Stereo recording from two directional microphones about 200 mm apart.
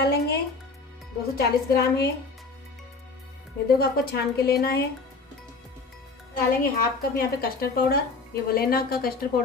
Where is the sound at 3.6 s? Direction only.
50° left (ahead or behind).